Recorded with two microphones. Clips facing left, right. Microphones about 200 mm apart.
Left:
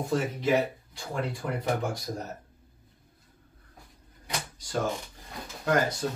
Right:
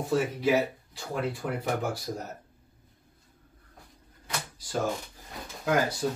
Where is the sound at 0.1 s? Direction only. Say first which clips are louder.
Right 1 dB; 5° right (ahead or behind).